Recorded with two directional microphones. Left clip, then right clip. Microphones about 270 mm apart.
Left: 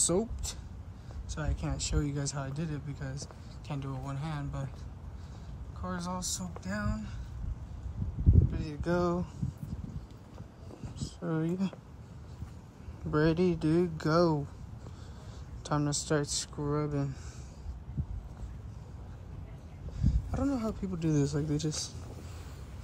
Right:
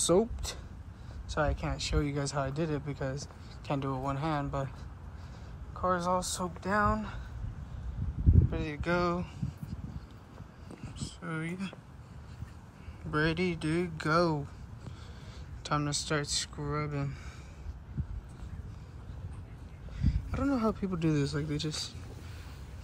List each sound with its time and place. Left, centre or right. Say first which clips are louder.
0.0 s speech: right 4 dB; centre
5.8 s speech: right 9 dB; centre
8.5 s speech: right 2 dB; centre
11.0 s speech: left 4 dB; centre
13.1 s speech: left 2 dB; centre
15.6 s speech: right 1 dB; centre
20.0 s a sound: even; centre
20.9 s speech: even; centre